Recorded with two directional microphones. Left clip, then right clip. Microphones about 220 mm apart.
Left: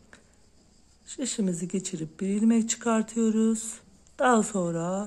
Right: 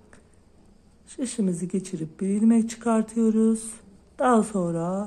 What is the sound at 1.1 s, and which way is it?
Speech, 15° left (ahead or behind).